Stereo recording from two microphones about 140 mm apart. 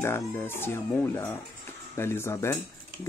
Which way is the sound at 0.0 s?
15° left (ahead or behind).